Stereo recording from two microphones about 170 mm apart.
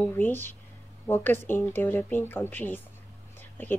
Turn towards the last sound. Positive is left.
turn(degrees=10)  # may be behind; listen again after turning